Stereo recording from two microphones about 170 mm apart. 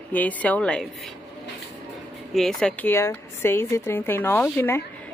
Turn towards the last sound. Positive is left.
turn(degrees=15)  # may be behind; listen again after turning